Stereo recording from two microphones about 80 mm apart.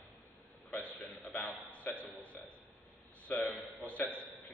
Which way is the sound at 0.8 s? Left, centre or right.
Left.